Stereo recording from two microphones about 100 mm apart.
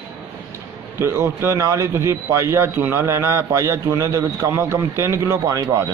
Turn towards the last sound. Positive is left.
turn(degrees=-35)  # may be behind; listen again after turning